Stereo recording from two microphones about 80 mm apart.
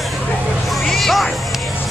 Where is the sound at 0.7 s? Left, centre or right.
Centre.